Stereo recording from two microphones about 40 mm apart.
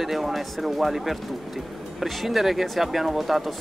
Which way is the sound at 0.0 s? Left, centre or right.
Centre.